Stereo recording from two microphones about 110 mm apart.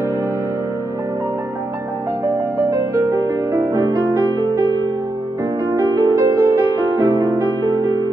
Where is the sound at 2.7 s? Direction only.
30° right (ahead or behind).